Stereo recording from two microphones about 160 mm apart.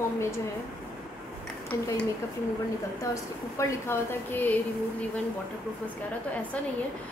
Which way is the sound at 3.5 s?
15° left (ahead or behind).